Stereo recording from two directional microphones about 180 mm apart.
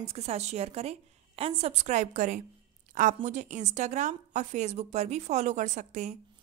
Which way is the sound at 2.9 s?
45° right (ahead or behind).